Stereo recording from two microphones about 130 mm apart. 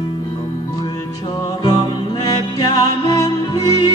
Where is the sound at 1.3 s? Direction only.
35° left (ahead or behind).